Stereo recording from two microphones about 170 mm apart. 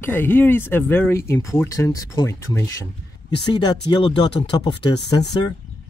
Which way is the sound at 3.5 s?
25° left (ahead or behind).